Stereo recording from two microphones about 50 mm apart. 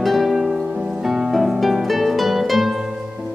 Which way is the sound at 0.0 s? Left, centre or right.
Centre.